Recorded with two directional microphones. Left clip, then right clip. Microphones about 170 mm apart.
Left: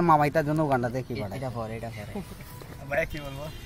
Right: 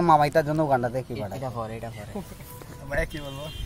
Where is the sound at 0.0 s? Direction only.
5° left (ahead or behind).